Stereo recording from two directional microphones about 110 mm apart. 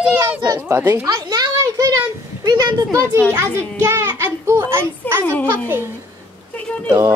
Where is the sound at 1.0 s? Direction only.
35° right (ahead or behind).